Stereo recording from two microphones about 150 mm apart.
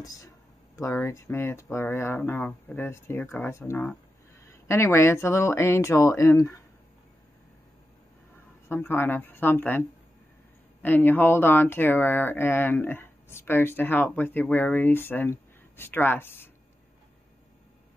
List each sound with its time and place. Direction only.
0.0 s speech: 25° left (ahead or behind)
8.6 s speech: 15° left (ahead or behind)